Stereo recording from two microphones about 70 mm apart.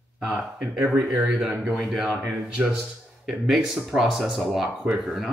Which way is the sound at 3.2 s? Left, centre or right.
Centre.